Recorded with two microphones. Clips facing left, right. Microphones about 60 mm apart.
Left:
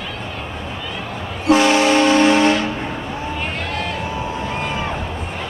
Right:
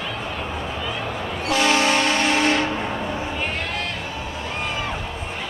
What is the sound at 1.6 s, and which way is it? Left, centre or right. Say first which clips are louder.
Train: left 4 dB; centre.